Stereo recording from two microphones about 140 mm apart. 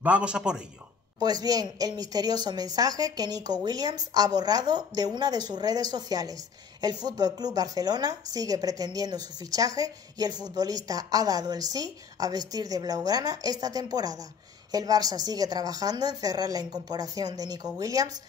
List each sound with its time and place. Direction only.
0.0 s a man's voice: 10° right (ahead or behind)
1.2 s speech: 30° right (ahead or behind)